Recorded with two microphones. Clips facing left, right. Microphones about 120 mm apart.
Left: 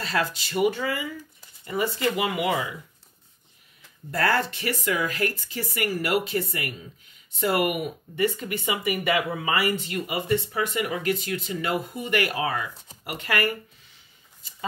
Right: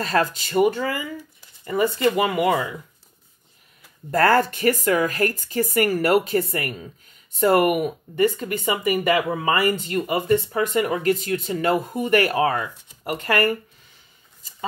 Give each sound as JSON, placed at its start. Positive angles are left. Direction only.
{"t": 0.0, "sound": "speech", "side_deg": -45}
{"t": 4.1, "sound": "speech", "side_deg": -45}